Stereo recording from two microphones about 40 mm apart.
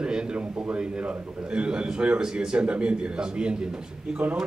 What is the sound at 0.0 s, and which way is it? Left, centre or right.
A man's voice, right.